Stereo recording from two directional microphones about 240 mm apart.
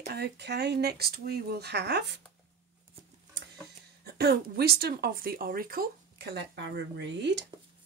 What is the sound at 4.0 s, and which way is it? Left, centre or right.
Speech, right.